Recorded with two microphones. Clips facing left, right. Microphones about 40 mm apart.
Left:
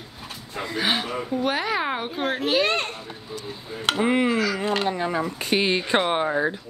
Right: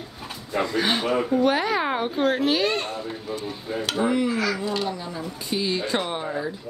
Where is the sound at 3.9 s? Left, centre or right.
Left.